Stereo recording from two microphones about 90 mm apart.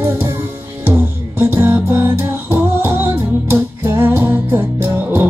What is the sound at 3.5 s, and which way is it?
Music, 25° right (ahead or behind).